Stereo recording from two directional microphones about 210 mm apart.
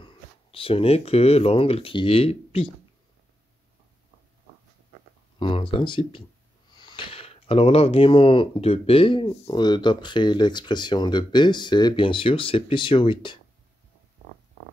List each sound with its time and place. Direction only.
0.0 s speech: 25° left (ahead or behind)
5.4 s speech: 25° left (ahead or behind)